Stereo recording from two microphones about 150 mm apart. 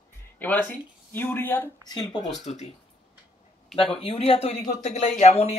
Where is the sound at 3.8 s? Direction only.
35° left (ahead or behind).